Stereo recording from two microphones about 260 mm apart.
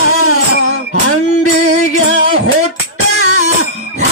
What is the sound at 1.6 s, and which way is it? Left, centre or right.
Music, left.